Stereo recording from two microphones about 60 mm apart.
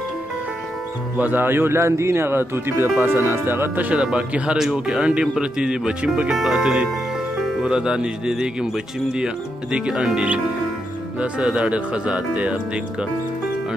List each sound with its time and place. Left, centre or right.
1.1 s speech: right
3.9 s speech: centre
6.3 s speech: centre
7.4 s music: centre
7.7 s speech: centre
11.4 s speech: centre